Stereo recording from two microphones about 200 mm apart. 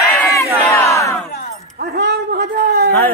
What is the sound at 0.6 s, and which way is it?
Battle cry, 15° left (ahead or behind).